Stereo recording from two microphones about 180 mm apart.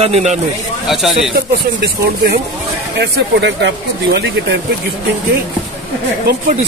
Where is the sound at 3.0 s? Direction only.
85° right.